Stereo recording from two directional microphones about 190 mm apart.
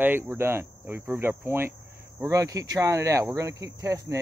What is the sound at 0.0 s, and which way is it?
Speech, 10° right (ahead or behind).